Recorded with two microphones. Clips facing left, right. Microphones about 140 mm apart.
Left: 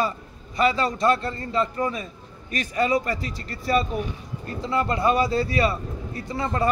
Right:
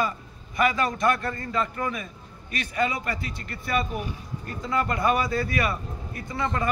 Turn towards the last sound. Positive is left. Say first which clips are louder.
# left 2 dB
turn(degrees=35)  # may be behind; listen again after turning